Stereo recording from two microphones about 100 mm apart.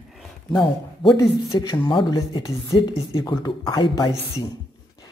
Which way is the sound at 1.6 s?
45° left (ahead or behind).